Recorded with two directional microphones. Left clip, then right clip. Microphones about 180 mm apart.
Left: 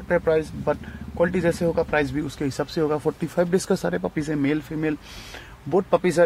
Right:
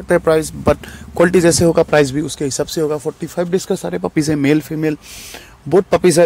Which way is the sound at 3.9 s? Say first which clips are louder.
Right 8 dB; 35° right (ahead or behind).